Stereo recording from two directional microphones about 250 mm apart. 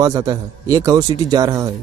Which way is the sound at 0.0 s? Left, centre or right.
Centre.